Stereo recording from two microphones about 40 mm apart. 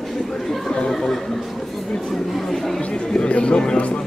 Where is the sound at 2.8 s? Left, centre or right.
Left.